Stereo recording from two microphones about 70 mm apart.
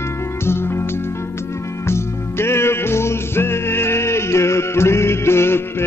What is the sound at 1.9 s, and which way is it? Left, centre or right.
Music, left.